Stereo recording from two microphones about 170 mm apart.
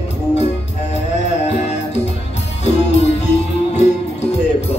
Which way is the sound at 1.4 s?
40° left (ahead or behind).